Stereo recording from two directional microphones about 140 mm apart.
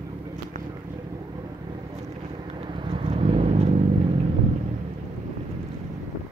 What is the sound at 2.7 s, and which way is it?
Vehicle, 40° right (ahead or behind).